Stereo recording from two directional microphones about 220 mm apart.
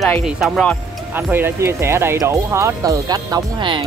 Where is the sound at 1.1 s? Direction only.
10° right (ahead or behind).